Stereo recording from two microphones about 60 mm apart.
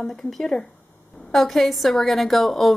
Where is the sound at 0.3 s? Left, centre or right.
Centre.